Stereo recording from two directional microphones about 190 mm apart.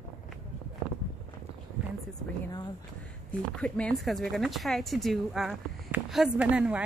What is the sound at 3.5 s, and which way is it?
A woman's voice, 5° left (ahead or behind).